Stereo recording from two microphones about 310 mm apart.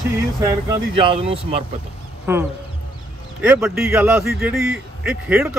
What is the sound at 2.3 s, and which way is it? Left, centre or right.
A man's voice, centre.